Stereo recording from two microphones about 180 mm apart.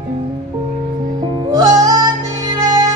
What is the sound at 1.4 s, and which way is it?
Music, 20° right (ahead or behind).